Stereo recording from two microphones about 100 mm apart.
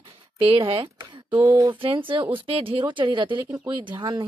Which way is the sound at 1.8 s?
60° right (ahead or behind).